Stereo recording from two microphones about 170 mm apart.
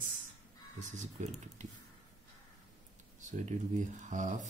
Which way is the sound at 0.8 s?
45° right (ahead or behind).